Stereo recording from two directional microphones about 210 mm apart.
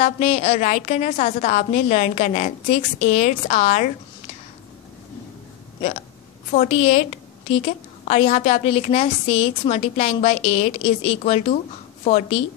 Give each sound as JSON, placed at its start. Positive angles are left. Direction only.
{"t": 0.0, "sound": "a woman's voice", "side_deg": 30}
{"t": 5.8, "sound": "a woman's voice", "side_deg": 35}